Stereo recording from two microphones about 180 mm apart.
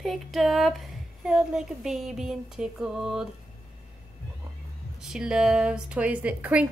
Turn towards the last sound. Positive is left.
turn(degrees=-5)  # may be behind; listen again after turning